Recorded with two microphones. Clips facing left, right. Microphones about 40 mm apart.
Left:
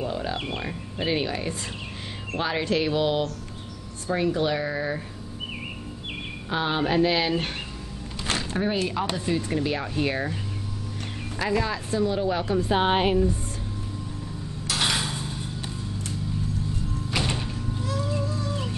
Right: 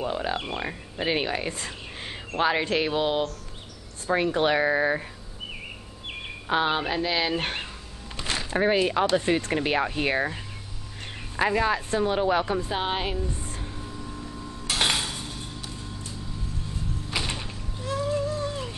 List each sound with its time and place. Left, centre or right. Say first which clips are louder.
0.0 s speech: right 1 dB; right
1.0 s music: even; right
4.1 s speech: right 2 dB; right
6.6 s speech: left 2 dB; centre
6.9 s speech: left 4 dB; centre
7.3 s speech: even; right
12.8 s a woman's voice: left 7 dB; centre
14.7 s a sound: right 1 dB; right
17.1 s sliding door: left 2 dB; centre
17.8 s music: right 4 dB; right